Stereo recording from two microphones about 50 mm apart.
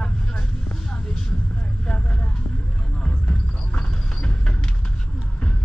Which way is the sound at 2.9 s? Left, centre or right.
Centre.